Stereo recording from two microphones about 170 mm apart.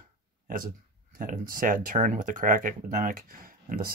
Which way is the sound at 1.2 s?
55° right (ahead or behind).